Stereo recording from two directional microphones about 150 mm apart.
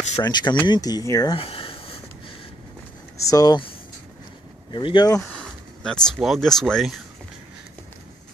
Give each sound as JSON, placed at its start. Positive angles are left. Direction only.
{"t": 0.2, "sound": "speech", "side_deg": 30}
{"t": 1.3, "sound": "a sound", "side_deg": 40}
{"t": 3.3, "sound": "speech", "side_deg": 25}
{"t": 4.7, "sound": "speech", "side_deg": 30}
{"t": 5.3, "sound": "speech", "side_deg": 5}